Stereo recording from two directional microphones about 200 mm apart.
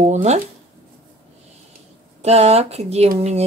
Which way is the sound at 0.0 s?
35° right (ahead or behind).